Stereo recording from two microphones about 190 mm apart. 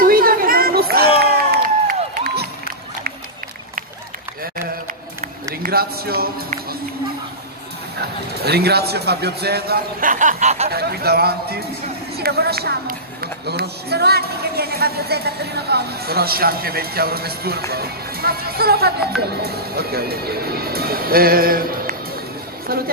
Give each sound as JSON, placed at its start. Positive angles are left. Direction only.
{"t": 0.0, "sound": "a sound", "side_deg": -50}
{"t": 1.2, "sound": "music", "side_deg": -55}
{"t": 5.2, "sound": "run", "side_deg": -50}
{"t": 8.4, "sound": "a woman's voice", "side_deg": -55}
{"t": 10.7, "sound": "a woman's voice", "side_deg": -55}